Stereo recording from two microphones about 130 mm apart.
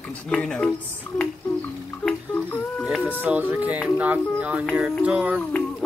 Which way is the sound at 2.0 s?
10° left (ahead or behind).